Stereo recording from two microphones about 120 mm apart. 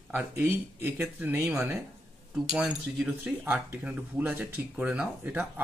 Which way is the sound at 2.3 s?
5° right (ahead or behind).